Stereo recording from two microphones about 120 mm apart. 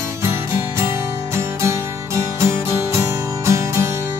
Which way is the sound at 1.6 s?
25° right (ahead or behind).